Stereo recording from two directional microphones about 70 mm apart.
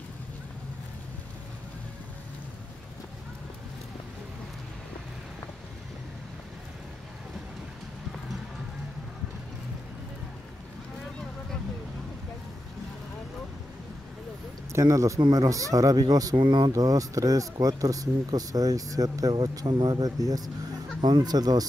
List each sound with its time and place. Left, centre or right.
14.7 s speech: right
15.1 s speech: right
21.0 s speech: right